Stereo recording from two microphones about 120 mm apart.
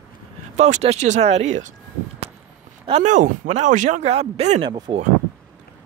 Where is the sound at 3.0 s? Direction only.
90° right; by 4.5 s 60° right (ahead or behind).